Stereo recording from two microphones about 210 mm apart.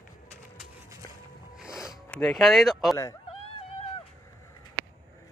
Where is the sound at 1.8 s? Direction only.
15° left (ahead or behind).